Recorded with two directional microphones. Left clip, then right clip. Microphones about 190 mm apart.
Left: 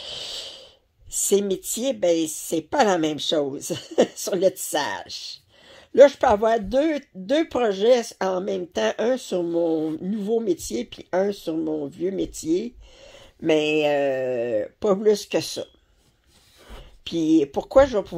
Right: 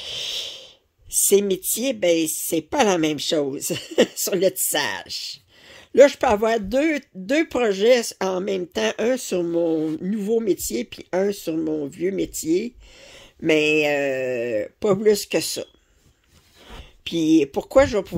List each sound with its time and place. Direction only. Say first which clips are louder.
0.0 s snort: right 5 dB; 25° right (ahead or behind)
1.3 s speech: right 3 dB; 30° right (ahead or behind)